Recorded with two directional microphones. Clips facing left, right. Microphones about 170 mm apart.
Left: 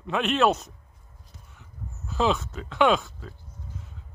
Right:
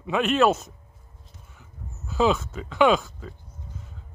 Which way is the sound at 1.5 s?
Centre (ahead or behind).